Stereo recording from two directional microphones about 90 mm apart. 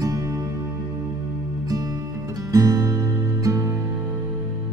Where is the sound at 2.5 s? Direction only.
40° right (ahead or behind).